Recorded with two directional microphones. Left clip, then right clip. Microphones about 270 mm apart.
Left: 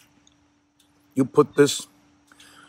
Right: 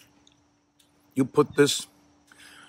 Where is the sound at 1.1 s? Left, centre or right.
Centre.